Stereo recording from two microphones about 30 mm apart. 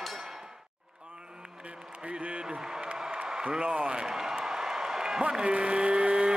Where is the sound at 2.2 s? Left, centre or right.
Right.